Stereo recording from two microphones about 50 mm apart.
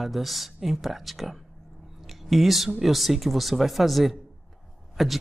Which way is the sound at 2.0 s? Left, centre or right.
Centre.